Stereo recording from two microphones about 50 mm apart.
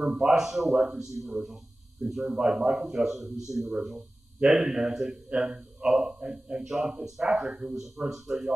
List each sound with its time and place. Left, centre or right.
0.0 s a man's voice: centre